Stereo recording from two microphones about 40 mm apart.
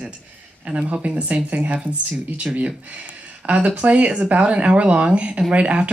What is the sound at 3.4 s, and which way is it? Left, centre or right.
Speech, right.